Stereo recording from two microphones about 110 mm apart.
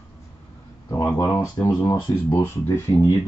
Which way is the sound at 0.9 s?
25° left (ahead or behind).